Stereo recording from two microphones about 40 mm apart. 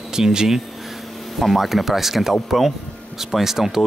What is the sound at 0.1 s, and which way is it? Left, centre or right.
Speech, centre.